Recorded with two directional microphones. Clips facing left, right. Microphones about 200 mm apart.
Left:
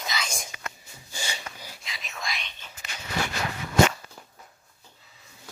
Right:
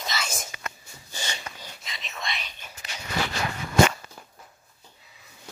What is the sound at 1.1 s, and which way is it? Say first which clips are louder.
Whispering: even; 10° left (ahead or behind).